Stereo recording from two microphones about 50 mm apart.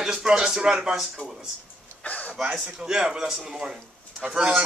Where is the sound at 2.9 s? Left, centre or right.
Centre.